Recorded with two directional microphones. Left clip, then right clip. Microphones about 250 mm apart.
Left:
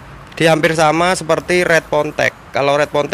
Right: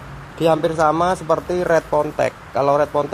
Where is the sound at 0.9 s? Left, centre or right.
Centre.